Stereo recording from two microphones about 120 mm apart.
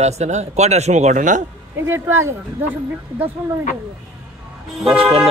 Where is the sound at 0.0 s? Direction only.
70° right (ahead or behind); by 1.4 s 90° right.